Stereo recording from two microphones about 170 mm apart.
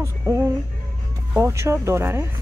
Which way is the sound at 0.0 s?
15° right (ahead or behind).